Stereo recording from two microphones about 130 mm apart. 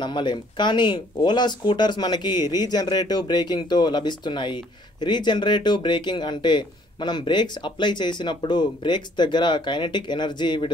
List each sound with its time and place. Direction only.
0.0 s speech: 35° left (ahead or behind)